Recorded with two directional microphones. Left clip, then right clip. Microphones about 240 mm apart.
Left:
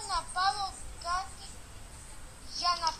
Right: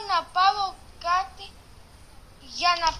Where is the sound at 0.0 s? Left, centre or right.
Right.